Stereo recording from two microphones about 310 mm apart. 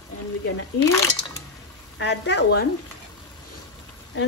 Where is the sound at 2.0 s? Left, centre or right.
Left.